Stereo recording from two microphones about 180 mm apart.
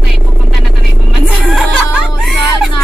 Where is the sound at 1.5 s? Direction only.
Centre (ahead or behind).